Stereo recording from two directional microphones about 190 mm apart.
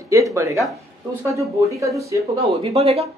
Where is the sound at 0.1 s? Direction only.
15° right (ahead or behind).